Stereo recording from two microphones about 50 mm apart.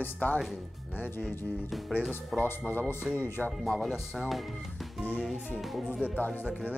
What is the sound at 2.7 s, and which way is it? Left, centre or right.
Speech, left.